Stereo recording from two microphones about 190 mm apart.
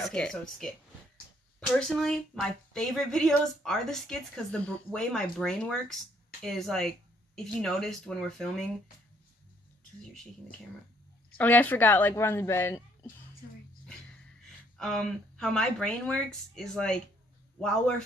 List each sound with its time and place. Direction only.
0.0 s speech: 5° left (ahead or behind)
1.7 s speech: centre (ahead or behind)
11.3 s a woman's voice: 10° left (ahead or behind)
14.8 s speech: 5° left (ahead or behind)